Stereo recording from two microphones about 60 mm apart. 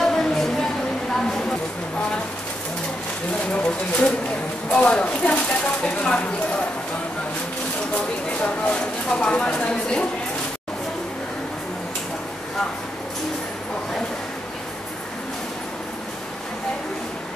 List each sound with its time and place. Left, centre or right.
0.0 s a sound: centre
3.5 s speech: centre
8.6 s speech: centre